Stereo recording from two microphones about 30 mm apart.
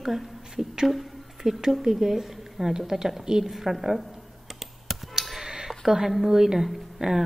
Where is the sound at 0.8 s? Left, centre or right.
Centre.